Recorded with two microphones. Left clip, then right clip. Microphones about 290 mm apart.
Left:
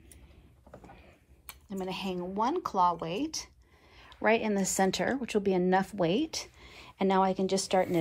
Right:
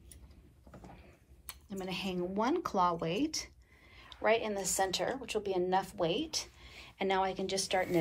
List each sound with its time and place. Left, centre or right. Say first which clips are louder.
1.5 s speech: left 3 dB; centre